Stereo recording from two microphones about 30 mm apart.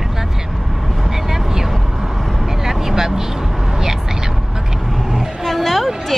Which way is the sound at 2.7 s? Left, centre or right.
Centre.